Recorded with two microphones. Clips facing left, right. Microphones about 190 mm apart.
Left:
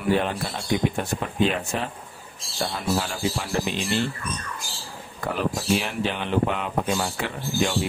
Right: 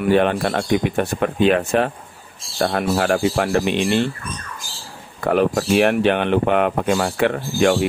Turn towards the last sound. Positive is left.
turn(degrees=-65)  # may be behind; listen again after turning